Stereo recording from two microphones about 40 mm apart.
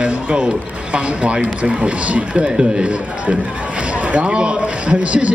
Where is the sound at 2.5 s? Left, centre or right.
Right.